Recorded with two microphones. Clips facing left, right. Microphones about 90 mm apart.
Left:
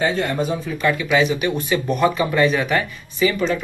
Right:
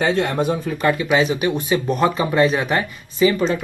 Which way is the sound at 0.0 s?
70° right (ahead or behind).